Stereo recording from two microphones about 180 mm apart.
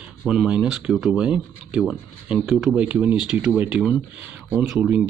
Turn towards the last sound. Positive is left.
turn(degrees=-5)  # may be behind; listen again after turning